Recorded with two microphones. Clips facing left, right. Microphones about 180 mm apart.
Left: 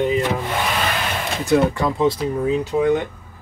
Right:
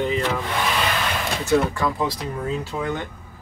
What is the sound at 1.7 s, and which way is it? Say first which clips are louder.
Speech: left 5 dB; 25° left (ahead or behind).